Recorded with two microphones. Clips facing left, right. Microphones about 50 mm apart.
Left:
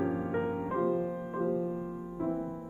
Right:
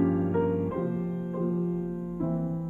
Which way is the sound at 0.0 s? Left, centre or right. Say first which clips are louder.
Right 6 dB; centre.